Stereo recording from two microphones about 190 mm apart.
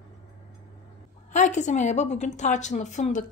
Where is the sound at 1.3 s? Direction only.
40° left (ahead or behind).